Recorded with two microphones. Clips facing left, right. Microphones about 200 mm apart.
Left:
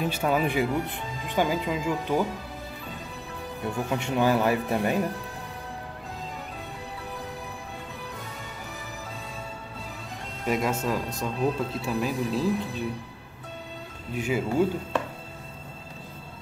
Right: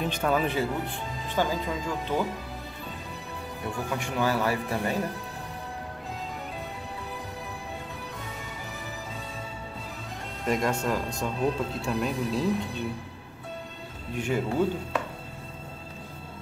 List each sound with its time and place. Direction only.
0.0 s speech: 10° left (ahead or behind)
3.9 s speech: 20° left (ahead or behind)
10.4 s speech: centre (ahead or behind)
14.1 s speech: 5° left (ahead or behind)